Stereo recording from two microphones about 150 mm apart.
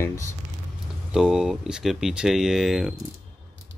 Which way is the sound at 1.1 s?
5° right (ahead or behind).